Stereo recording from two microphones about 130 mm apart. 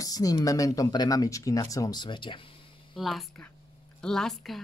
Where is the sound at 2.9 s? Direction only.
Centre (ahead or behind).